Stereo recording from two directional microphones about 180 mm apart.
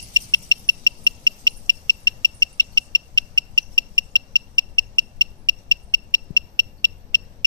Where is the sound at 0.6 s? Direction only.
25° right (ahead or behind).